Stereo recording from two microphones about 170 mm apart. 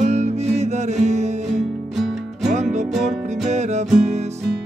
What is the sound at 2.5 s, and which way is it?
Music, 45° right (ahead or behind).